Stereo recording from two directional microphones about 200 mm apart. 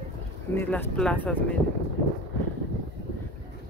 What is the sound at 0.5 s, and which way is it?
Speech, 10° left (ahead or behind).